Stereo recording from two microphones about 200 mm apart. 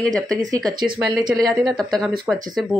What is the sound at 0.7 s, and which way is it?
Speech, 20° right (ahead or behind).